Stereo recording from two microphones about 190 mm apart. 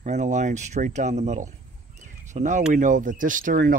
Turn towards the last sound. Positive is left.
turn(degrees=-50)  # may be behind; listen again after turning